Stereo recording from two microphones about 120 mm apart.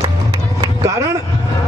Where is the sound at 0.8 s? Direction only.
25° right (ahead or behind).